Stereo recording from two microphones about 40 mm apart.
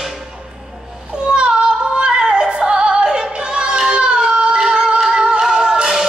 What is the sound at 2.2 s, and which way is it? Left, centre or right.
Music, centre.